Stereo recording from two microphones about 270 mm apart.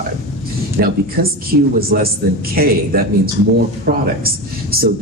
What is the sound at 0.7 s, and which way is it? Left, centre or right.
Speech, right.